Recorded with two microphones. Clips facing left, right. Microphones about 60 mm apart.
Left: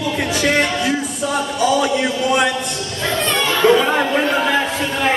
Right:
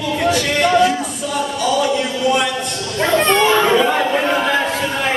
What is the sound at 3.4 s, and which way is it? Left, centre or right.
Chatter, centre.